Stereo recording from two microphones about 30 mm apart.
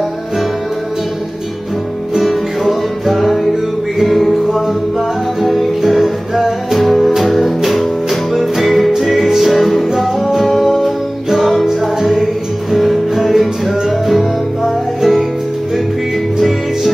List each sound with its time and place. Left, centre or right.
2.2 s music: centre
5.8 s music: centre
6.8 s music: centre
12.7 s music: centre
16.3 s music: centre